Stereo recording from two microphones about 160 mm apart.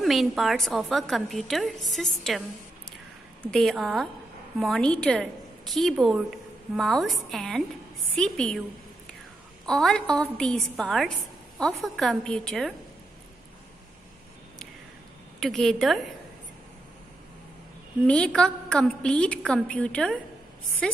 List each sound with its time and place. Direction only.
0.0 s a woman's voice: centre (ahead or behind)
3.5 s a woman's voice: centre (ahead or behind)
9.7 s a woman's voice: 5° left (ahead or behind)
15.4 s a woman's voice: centre (ahead or behind)
18.0 s a woman's voice: 5° left (ahead or behind)